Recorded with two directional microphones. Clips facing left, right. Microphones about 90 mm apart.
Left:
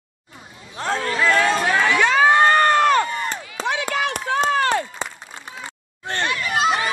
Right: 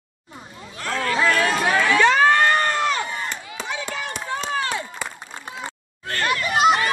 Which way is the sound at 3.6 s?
70° left (ahead or behind).